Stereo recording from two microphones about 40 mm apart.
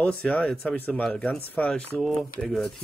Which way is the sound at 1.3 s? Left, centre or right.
Left.